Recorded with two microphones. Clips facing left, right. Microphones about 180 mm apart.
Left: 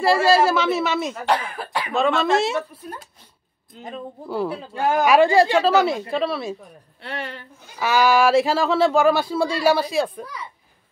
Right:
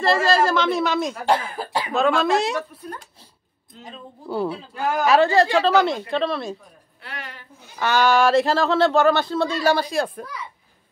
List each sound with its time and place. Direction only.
0.0 s speech: 10° left (ahead or behind)
4.3 s speech: centre (ahead or behind)
4.7 s speech: 30° left (ahead or behind)
5.0 s speech: 10° left (ahead or behind)
7.0 s speech: 30° left (ahead or behind)
7.8 s speech: 5° left (ahead or behind)